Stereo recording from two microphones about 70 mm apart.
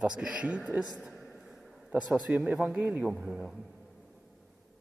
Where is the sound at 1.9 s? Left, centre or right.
Centre.